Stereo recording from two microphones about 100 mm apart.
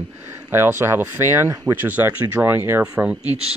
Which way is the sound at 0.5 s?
25° right (ahead or behind).